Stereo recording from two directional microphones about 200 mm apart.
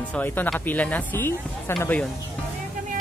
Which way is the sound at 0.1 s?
10° left (ahead or behind).